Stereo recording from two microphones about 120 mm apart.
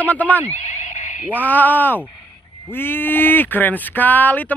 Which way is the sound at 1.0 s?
90° left.